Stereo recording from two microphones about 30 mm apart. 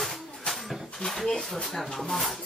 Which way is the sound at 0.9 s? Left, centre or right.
Centre.